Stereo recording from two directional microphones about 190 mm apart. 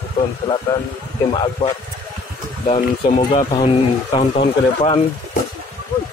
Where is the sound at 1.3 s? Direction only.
30° left (ahead or behind).